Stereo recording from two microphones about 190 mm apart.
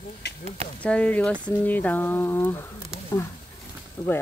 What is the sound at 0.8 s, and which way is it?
Speech, 5° left (ahead or behind).